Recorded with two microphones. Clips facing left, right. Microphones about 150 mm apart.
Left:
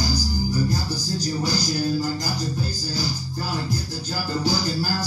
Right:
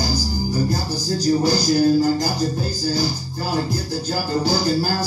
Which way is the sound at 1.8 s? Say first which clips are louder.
Right 8 dB; 55° right (ahead or behind).